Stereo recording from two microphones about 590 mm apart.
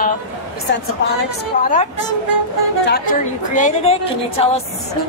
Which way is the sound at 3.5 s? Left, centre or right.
Centre.